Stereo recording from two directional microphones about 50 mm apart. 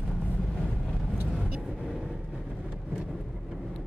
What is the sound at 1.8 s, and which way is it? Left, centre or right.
Vehicle, centre.